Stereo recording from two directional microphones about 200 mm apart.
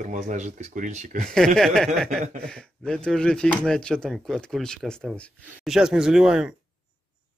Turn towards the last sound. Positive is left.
turn(degrees=-5)  # may be behind; listen again after turning